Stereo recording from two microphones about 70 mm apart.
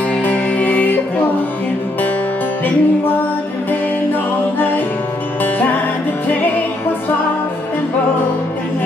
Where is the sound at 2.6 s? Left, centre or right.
Left.